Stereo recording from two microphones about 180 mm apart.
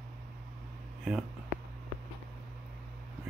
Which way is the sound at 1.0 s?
5° right (ahead or behind).